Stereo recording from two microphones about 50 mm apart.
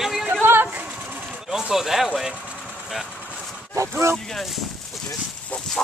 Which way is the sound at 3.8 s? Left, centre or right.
Right.